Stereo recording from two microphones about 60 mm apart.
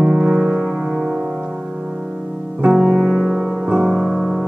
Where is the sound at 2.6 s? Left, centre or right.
Centre.